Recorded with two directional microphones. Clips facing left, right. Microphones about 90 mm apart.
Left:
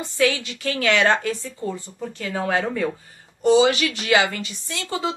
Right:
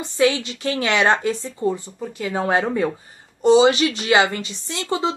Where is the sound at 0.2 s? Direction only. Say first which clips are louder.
Right 3 dB; 20° right (ahead or behind).